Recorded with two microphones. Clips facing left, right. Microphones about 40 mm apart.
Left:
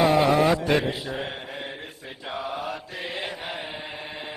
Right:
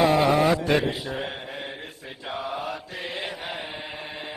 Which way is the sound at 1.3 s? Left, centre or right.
Right.